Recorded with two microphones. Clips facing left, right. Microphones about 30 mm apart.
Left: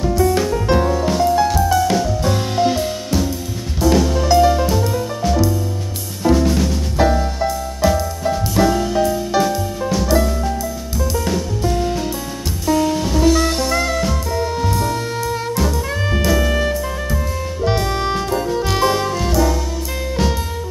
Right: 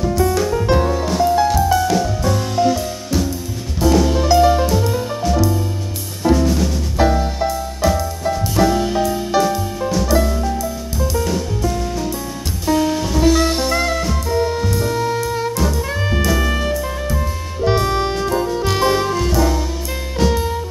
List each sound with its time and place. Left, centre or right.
0.6 s music: centre
1.9 s music: left
3.8 s music: centre
6.2 s drum kit: centre
7.8 s music: centre
12.8 s music: centre